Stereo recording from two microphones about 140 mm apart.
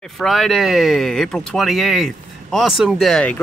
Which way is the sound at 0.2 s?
Centre (ahead or behind).